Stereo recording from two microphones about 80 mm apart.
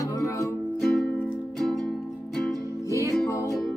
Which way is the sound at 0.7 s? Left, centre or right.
Centre.